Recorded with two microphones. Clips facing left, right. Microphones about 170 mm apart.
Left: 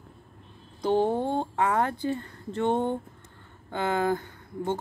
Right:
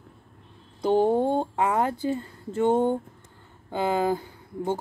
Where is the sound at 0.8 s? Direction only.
10° right (ahead or behind).